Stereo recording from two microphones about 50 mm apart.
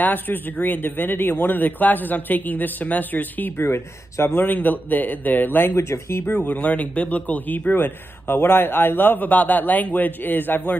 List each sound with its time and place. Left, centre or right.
0.0 s a man's voice: left
3.5 s a man's voice: left
5.8 s speech: left
6.2 s a man's voice: left